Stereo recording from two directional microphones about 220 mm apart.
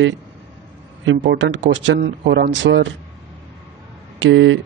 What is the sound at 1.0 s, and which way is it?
Speech, 50° right (ahead or behind).